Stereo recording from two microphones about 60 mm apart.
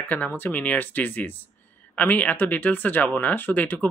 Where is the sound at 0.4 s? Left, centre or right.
Left.